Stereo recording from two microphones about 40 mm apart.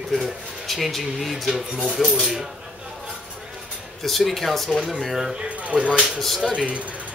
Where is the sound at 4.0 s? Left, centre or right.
Centre.